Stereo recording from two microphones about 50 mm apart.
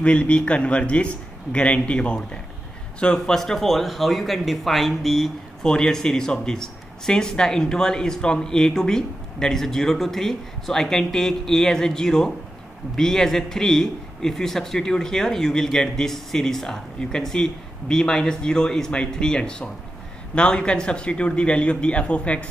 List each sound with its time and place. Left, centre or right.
0.0 s a man's voice: left
3.3 s a man's voice: centre; by 22.5 s left